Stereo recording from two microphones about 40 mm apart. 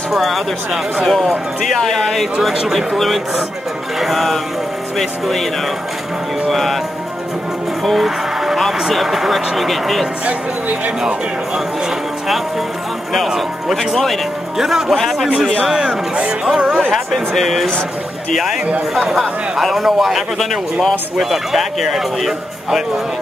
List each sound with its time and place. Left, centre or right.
0.1 s a man's voice: centre
1.8 s a man's voice: centre
6.5 s a man's voice: centre
7.8 s music: centre
8.7 s a man's voice: centre
13.7 s a man's voice: centre
14.6 s a man's voice: centre
15.7 s speech: centre
17.3 s a man's voice: centre